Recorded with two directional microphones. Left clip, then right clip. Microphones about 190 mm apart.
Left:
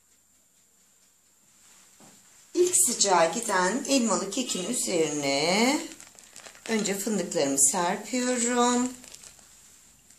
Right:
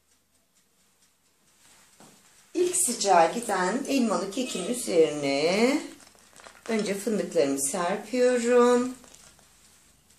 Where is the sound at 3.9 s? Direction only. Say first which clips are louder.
Left 1 dB; 55° left (ahead or behind).